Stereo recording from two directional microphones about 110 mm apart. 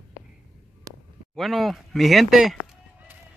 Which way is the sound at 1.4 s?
Centre (ahead or behind).